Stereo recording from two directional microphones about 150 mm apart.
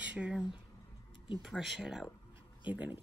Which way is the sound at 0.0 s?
10° right (ahead or behind).